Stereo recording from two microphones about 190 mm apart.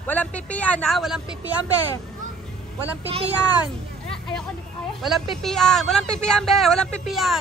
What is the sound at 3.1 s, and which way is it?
Speech, 30° right (ahead or behind).